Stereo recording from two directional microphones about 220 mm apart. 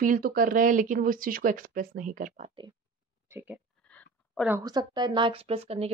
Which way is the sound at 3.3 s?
10° right (ahead or behind).